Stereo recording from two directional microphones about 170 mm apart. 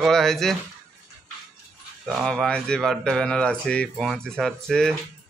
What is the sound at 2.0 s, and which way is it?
Speech, centre (ahead or behind).